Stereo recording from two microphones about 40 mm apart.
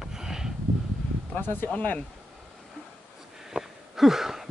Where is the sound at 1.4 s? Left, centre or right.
Left.